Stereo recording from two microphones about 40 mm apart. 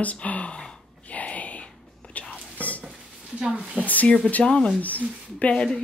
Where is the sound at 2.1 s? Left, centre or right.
Left.